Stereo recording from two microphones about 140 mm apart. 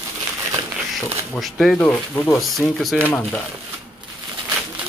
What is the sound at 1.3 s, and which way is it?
Speech, centre (ahead or behind).